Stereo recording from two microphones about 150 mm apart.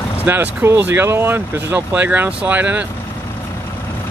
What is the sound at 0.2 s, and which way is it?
Speech, 10° right (ahead or behind).